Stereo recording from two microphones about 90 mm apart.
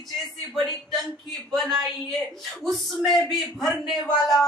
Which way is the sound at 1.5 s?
Centre (ahead or behind).